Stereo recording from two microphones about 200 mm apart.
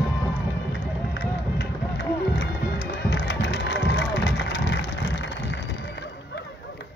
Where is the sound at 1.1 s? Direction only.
60° left (ahead or behind).